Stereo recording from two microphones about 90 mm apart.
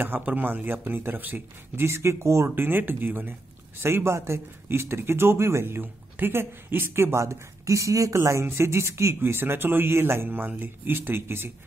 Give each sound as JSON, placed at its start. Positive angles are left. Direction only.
{"t": 0.0, "sound": "speech", "side_deg": -20}
{"t": 1.9, "sound": "speech", "side_deg": -30}